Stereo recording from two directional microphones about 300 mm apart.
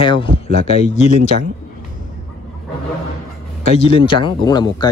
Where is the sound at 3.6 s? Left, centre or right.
Centre.